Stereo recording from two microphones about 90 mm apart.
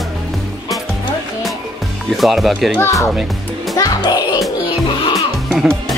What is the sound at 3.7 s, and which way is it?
Music, 40° left (ahead or behind).